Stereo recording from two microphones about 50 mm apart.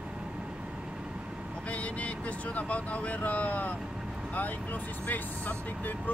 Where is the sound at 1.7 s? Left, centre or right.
Left.